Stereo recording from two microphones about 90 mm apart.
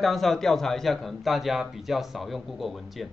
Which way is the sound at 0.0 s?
Centre (ahead or behind).